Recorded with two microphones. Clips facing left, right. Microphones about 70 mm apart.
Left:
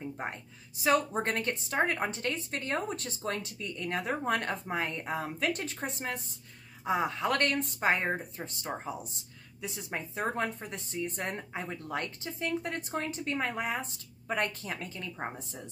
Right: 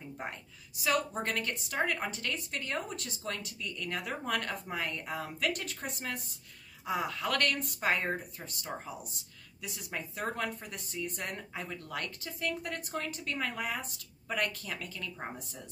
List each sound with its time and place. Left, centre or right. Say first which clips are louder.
0.2 s a woman's voice: left 3 dB; left